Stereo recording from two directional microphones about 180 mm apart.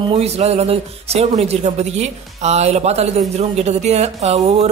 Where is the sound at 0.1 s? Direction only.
35° right (ahead or behind).